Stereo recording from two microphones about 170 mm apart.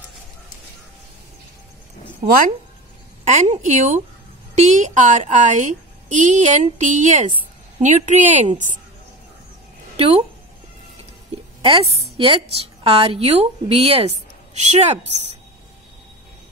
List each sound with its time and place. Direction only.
2.2 s a woman's voice: 50° right (ahead or behind)
9.9 s speech: 35° right (ahead or behind)
11.6 s a woman's voice: 35° right (ahead or behind)